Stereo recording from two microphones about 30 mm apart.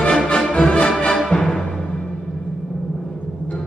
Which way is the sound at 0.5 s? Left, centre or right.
Left.